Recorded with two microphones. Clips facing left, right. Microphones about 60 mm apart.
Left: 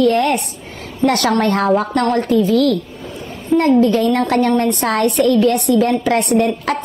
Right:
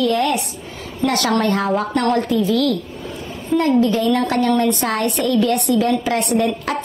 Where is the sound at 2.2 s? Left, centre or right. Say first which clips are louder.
Left 4 dB; left.